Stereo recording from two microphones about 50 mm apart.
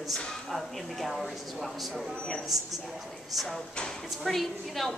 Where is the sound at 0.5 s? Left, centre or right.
Centre.